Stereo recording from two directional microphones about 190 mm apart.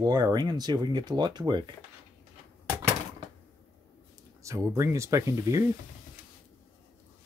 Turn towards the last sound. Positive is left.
turn(degrees=-15)  # may be behind; listen again after turning